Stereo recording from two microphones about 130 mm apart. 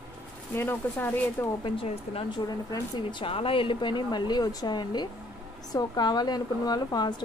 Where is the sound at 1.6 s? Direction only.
40° left (ahead or behind).